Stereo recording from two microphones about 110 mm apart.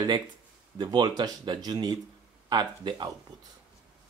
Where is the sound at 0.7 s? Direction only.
40° right (ahead or behind).